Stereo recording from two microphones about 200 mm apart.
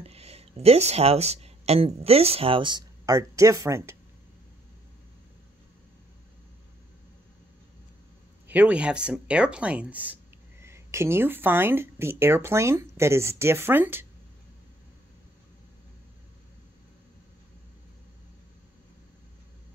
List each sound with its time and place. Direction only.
0.0 s speech: 30° right (ahead or behind); by 3.9 s 15° right (ahead or behind)
8.5 s speech: 5° right (ahead or behind)